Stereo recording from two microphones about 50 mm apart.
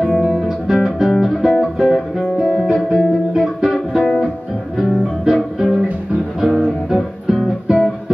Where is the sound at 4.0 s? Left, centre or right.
Centre.